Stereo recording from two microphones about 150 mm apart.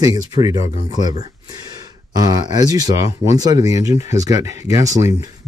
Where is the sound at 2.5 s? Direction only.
25° right (ahead or behind).